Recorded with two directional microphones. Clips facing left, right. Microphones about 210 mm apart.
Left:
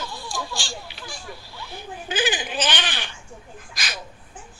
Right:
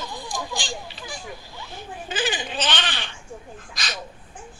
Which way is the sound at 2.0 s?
Centre (ahead or behind).